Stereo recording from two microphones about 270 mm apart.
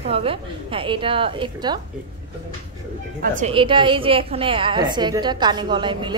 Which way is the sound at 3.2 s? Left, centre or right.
Right.